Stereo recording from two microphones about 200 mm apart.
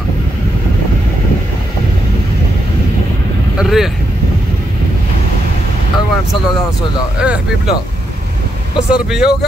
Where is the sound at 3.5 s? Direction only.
Centre (ahead or behind).